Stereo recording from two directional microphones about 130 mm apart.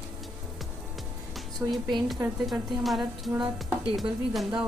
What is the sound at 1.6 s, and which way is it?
Speech, 15° right (ahead or behind).